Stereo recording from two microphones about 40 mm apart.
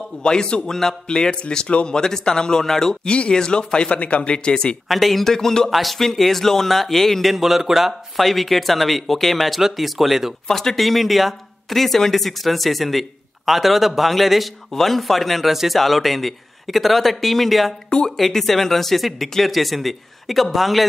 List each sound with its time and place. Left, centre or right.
0.2 s speech: left
3.1 s speech: left
4.8 s a man's voice: centre
5.3 s speech: centre
5.7 s speech: centre
7.3 s a man's voice: centre
10.5 s speech: centre
10.8 s a man's voice: centre
17.8 s speech: centre
18.1 s a man's voice: centre